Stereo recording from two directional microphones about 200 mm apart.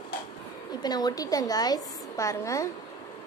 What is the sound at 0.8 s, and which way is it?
A woman's voice, 20° left (ahead or behind).